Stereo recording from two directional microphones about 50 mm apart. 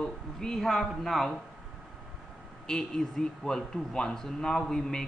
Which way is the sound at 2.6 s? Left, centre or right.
Centre.